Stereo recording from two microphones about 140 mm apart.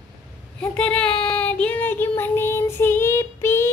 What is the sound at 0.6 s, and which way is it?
Child singing, 10° left (ahead or behind).